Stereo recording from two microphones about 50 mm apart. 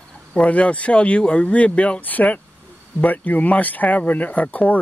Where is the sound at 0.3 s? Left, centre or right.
Left.